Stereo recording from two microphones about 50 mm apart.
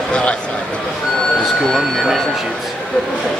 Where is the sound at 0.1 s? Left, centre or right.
Left.